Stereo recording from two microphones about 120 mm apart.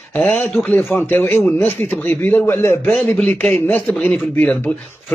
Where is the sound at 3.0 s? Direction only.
5° left (ahead or behind).